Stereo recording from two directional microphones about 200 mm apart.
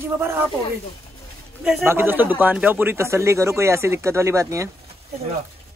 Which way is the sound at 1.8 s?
10° right (ahead or behind).